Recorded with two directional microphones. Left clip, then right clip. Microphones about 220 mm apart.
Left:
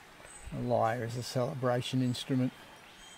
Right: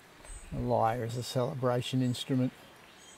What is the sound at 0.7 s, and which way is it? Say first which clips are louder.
Speech: right 1 dB; 15° right (ahead or behind).